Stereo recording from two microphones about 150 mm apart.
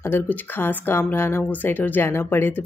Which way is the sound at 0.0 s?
10° left (ahead or behind).